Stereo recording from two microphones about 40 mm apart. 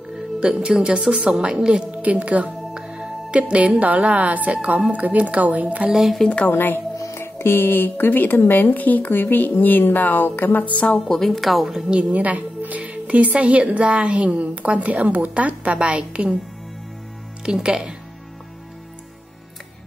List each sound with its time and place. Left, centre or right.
0.4 s a woman's voice: right
1.9 s a woman's voice: right
2.7 s music: centre
3.8 s a woman's voice: right
5.9 s speech: centre
6.2 s a woman's voice: left
6.5 s speech: left
7.3 s speech: left
9.1 s speech: left
11.1 s a woman's voice: centre
12.1 s a woman's voice: right
17.6 s a woman's voice: centre